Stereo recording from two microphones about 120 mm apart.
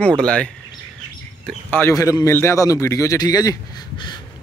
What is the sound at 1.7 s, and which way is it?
Speech, 15° left (ahead or behind).